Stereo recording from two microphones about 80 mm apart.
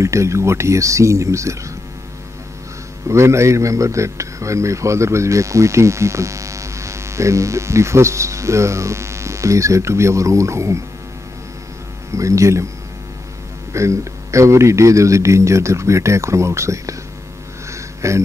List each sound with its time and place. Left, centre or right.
0.0 s speech: right
3.1 s speech: right
12.1 s speech: right
13.7 s speech: right
17.6 s a sound: right